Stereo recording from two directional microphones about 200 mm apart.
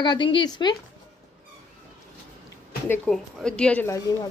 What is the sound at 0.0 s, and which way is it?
Speech, 25° left (ahead or behind).